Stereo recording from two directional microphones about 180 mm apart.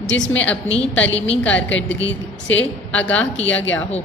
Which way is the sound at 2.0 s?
90° left.